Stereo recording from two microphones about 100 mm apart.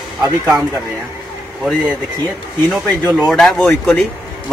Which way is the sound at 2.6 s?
Centre (ahead or behind).